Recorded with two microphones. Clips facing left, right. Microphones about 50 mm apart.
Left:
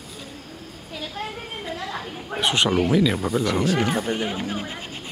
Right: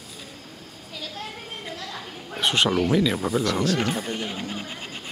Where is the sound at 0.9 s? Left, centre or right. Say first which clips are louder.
Left 4 dB; left.